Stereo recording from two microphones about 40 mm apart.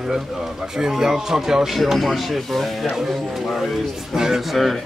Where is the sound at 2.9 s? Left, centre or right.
Centre.